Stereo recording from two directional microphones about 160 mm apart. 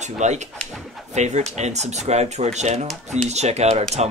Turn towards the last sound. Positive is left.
turn(degrees=-45)  # may be behind; listen again after turning